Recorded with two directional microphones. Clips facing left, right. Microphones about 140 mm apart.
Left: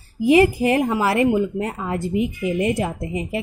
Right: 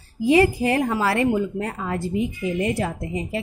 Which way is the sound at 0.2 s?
20° left (ahead or behind).